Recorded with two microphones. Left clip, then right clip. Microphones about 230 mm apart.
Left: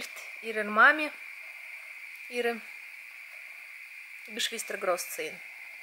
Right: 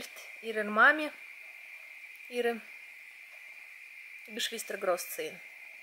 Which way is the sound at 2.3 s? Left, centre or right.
Centre.